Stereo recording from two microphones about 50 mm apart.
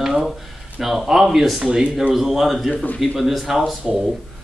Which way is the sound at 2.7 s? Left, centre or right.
Left.